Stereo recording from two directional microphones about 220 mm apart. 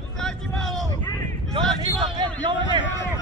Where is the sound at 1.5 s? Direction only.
20° right (ahead or behind).